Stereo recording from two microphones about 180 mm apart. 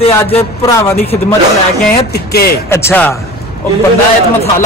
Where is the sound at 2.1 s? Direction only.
60° left (ahead or behind).